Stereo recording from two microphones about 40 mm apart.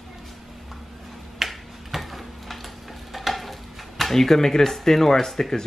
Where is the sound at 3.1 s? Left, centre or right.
Centre.